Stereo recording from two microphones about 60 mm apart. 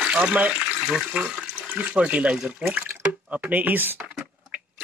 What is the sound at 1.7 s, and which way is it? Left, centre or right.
Speech, right.